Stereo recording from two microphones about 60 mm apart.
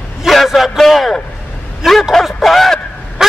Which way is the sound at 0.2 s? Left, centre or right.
Centre.